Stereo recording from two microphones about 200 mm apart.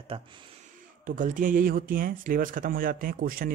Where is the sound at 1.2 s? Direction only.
40° right (ahead or behind).